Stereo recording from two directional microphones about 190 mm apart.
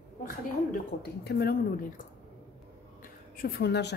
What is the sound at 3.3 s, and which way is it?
Speech, 50° left (ahead or behind).